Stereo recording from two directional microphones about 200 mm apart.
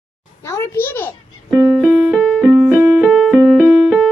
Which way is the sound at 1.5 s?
10° right (ahead or behind).